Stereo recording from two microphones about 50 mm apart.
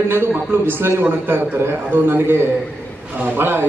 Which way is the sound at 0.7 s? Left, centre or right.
Right.